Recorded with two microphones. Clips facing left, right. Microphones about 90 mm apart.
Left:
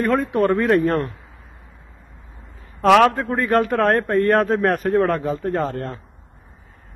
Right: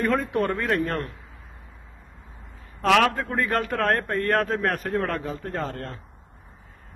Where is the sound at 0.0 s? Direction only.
10° left (ahead or behind).